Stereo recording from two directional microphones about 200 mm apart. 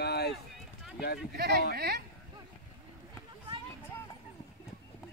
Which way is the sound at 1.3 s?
55° right (ahead or behind).